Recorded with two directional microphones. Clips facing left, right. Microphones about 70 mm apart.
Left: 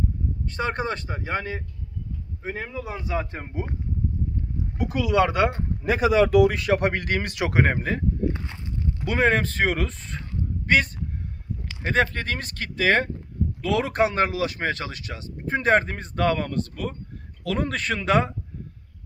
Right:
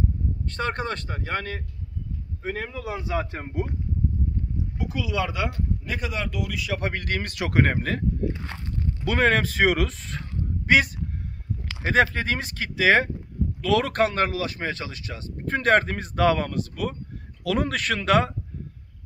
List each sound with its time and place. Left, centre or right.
0.5 s speech: centre
4.7 s speech: left
5.2 s speech: left
5.9 s speech: left
6.4 s speech: left
6.7 s speech: left
9.0 s speech: centre
13.6 s speech: centre
14.1 s speech: left
14.6 s speech: left
15.3 s speech: centre